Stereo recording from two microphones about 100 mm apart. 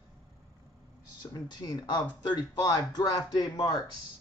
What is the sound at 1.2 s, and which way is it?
Speech, 45° left (ahead or behind).